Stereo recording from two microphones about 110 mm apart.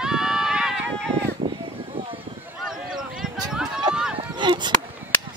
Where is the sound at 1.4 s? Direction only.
55° right (ahead or behind).